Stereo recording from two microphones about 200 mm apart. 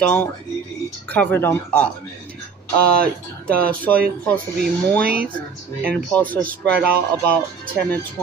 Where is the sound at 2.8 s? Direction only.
50° right (ahead or behind).